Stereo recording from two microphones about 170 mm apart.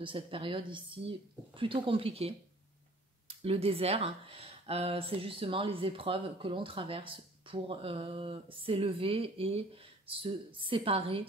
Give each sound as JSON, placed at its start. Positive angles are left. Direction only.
{"t": 0.0, "sound": "speech", "side_deg": -30}